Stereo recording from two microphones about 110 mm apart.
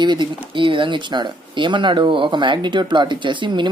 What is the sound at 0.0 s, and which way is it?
Speech, 45° right (ahead or behind).